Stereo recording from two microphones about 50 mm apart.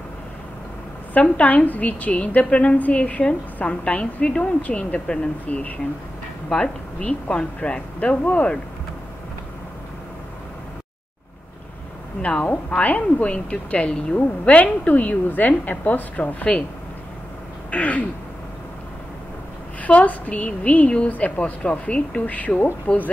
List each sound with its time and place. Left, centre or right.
1.1 s a woman's voice: left
12.2 s a woman's voice: left
17.6 s throat clearing: left
19.8 s a woman's voice: left